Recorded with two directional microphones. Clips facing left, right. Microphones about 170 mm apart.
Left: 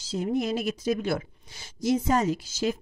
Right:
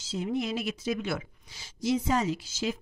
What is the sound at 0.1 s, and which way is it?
A woman's voice, 45° left (ahead or behind).